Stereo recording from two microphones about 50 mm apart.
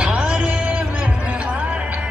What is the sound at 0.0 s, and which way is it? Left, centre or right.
Music, right.